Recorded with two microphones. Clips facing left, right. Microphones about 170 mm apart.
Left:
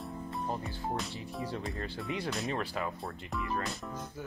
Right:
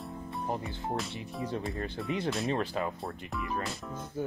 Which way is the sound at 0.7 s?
20° right (ahead or behind).